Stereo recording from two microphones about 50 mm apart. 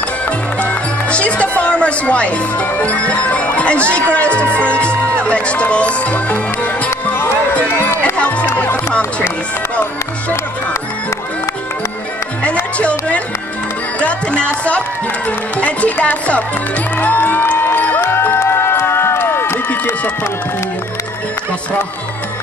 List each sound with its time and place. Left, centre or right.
0.2 s music: left
5.2 s speech: left
8.0 s music: left
12.7 s music: left
13.9 s speech: left
17.0 s music: left
18.0 s music: left